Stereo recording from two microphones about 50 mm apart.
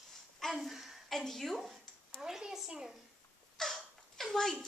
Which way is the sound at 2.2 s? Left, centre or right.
Centre.